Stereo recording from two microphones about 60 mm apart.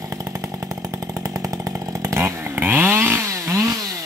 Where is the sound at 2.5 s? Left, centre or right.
Right.